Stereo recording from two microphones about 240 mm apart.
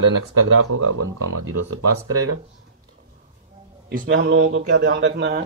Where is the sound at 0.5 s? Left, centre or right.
Right.